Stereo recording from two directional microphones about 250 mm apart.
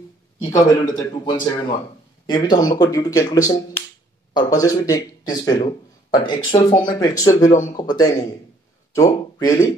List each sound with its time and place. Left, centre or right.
0.4 s speech: centre